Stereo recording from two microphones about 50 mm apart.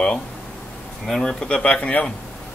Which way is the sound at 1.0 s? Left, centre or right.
Centre.